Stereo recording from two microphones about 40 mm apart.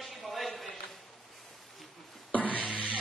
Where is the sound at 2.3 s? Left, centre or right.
Left.